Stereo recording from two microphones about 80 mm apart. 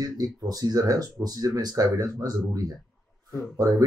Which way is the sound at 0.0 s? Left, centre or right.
Right.